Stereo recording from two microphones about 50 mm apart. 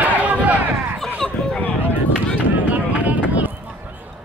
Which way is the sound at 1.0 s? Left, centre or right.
Left.